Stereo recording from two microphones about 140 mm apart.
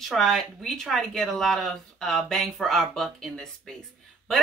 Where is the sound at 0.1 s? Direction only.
Centre (ahead or behind).